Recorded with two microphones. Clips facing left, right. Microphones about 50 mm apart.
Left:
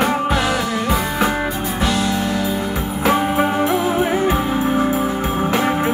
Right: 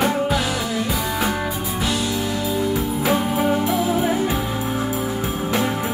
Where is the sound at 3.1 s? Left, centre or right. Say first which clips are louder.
Left 2 dB; left.